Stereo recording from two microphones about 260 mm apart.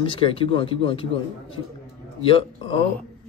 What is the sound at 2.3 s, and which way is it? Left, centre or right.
Speech, left.